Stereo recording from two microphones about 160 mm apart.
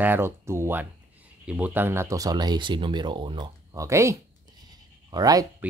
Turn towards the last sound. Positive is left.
turn(degrees=-25)  # may be behind; listen again after turning